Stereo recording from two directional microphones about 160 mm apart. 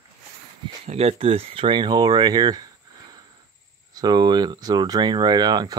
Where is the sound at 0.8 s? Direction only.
40° right (ahead or behind); by 2.6 s 25° right (ahead or behind).